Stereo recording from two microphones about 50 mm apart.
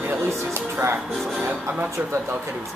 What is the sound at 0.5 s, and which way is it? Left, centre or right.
Music, right.